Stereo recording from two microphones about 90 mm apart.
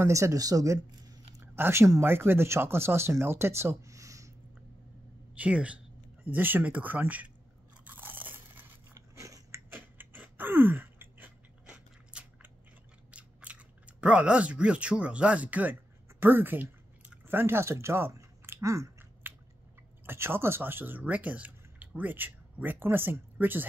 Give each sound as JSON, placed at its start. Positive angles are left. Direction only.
{"t": 0.0, "sound": "speech", "side_deg": -35}
{"t": 1.4, "sound": "a sound", "side_deg": -25}
{"t": 2.0, "sound": "speech", "side_deg": -25}
{"t": 5.3, "sound": "a woman's voice", "side_deg": -15}
{"t": 7.8, "sound": "crunch", "side_deg": -20}
{"t": 8.9, "sound": "biting", "side_deg": -35}
{"t": 9.8, "sound": "a sound", "side_deg": -20}
{"t": 11.6, "sound": "biting", "side_deg": -10}
{"t": 13.1, "sound": "chewing", "side_deg": -15}
{"t": 19.2, "sound": "biting", "side_deg": -25}
{"t": 20.1, "sound": "speech", "side_deg": -25}